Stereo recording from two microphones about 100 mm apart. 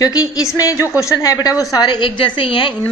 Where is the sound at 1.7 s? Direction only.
50° left (ahead or behind).